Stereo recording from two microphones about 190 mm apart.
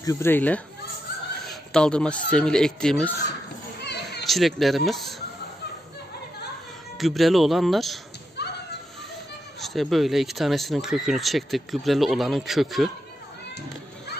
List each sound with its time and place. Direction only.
0.0 s speech: 15° left (ahead or behind)
1.4 s a sound: centre (ahead or behind)
2.3 s speech: 5° left (ahead or behind)
3.8 s children playing: 60° left (ahead or behind)
4.3 s speech: centre (ahead or behind)
7.0 s speech: centre (ahead or behind)
8.4 s a sound: 60° left (ahead or behind)
9.6 s speech: centre (ahead or behind)